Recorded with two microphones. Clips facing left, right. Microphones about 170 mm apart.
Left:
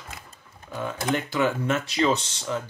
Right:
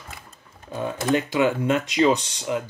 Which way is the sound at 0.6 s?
20° right (ahead or behind).